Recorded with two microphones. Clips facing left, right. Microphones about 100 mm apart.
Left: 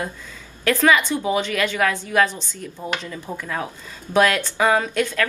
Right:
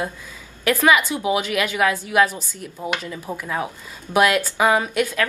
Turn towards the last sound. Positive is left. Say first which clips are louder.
# even
turn(degrees=-10)  # may be behind; listen again after turning